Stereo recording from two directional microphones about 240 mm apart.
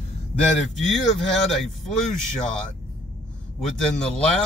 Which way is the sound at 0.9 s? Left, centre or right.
Centre.